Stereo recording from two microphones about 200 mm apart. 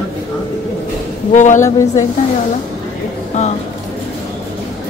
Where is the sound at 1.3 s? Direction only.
40° left (ahead or behind).